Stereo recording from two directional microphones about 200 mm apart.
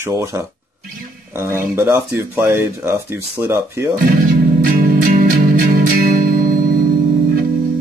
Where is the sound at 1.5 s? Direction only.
10° right (ahead or behind).